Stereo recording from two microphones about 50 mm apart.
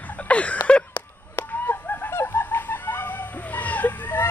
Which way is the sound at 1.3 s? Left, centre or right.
Left.